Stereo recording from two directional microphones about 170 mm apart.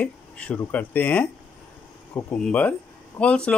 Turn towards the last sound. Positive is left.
turn(degrees=5)  # may be behind; listen again after turning